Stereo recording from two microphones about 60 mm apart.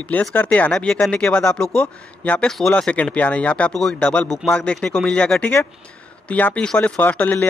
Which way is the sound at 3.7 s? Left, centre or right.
Centre.